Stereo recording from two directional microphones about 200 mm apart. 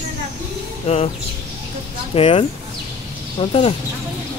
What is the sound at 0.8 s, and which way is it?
Speech, 30° left (ahead or behind).